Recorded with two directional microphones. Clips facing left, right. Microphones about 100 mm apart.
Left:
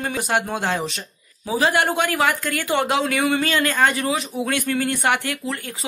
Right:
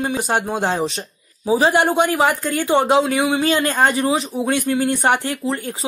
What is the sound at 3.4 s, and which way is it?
Speech, 35° right (ahead or behind).